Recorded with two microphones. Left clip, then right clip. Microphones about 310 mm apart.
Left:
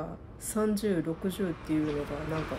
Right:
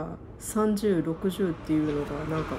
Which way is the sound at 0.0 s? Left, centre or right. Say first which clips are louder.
Right 2 dB; centre.